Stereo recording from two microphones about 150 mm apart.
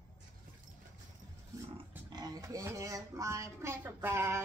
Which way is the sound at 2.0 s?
25° right (ahead or behind).